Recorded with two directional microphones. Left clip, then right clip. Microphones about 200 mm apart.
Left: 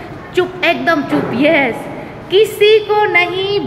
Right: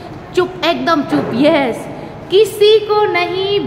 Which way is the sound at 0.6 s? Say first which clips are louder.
Left 2 dB; 15° right (ahead or behind).